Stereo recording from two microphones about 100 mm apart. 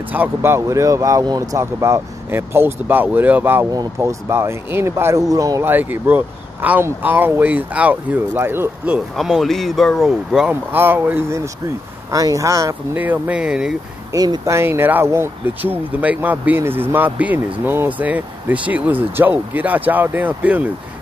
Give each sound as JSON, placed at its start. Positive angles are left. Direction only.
{"t": 0.1, "sound": "speech", "side_deg": -20}
{"t": 1.6, "sound": "speech", "side_deg": -30}
{"t": 5.7, "sound": "speech", "side_deg": -20}
{"t": 9.1, "sound": "speech", "side_deg": 0}
{"t": 10.5, "sound": "speech", "side_deg": -20}
{"t": 12.1, "sound": "speech", "side_deg": -35}
{"t": 12.9, "sound": "speech", "side_deg": -15}
{"t": 14.1, "sound": "speech", "side_deg": -40}
{"t": 14.5, "sound": "speech", "side_deg": -20}